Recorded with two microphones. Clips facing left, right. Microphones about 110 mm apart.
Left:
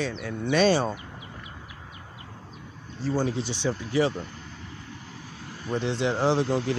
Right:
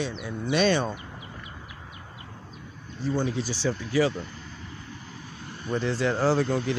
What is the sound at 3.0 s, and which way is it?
Speech, 40° left (ahead or behind).